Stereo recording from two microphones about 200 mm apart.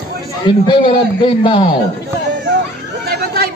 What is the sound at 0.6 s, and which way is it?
A man's voice, 25° left (ahead or behind).